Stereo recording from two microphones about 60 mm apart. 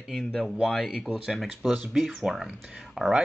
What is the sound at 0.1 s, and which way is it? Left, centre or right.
Speech, centre.